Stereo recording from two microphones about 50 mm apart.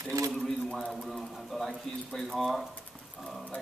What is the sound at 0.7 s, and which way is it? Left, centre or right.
Speech, centre.